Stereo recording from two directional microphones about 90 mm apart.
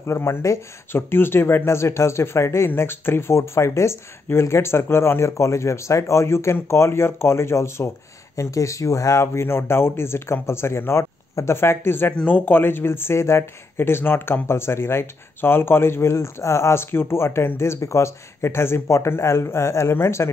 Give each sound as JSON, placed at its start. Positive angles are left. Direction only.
{"t": 0.0, "sound": "speech", "side_deg": 30}